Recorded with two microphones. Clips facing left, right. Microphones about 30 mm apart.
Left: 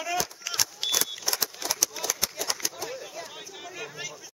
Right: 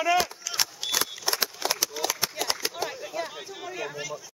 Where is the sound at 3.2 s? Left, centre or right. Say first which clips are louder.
Right 7 dB; right.